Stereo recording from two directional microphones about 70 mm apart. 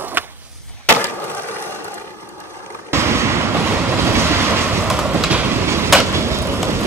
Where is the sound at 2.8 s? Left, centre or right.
Right.